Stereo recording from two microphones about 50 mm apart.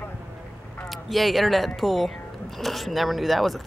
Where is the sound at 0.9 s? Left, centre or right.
Centre.